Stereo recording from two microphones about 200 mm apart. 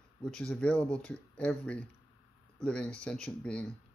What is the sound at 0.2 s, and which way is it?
Speech, 5° left (ahead or behind).